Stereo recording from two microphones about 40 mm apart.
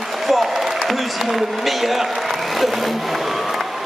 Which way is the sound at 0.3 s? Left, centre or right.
Centre.